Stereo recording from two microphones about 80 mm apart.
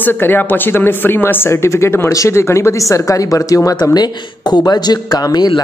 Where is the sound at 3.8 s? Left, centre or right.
Left.